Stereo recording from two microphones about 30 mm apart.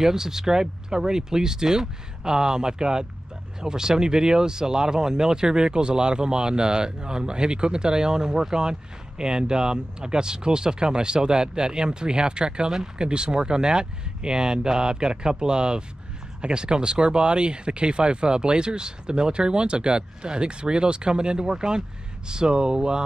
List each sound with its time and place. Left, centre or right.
0.0 s speech: centre